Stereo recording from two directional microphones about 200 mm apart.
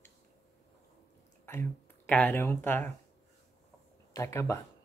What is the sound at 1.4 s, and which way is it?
Speech, 10° left (ahead or behind).